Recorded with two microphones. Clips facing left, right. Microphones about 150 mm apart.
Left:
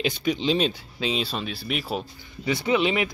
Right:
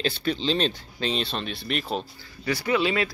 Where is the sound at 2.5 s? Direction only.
20° left (ahead or behind).